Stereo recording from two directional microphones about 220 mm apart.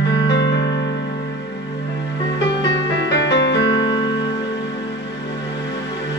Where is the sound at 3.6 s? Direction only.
15° left (ahead or behind).